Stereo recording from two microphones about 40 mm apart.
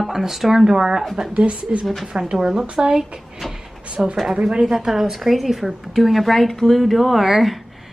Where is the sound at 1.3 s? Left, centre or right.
Right.